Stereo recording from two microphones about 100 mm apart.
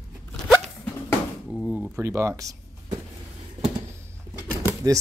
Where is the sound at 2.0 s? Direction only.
30° right (ahead or behind).